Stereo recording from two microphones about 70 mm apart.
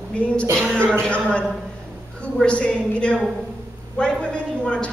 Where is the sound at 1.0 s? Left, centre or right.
Centre.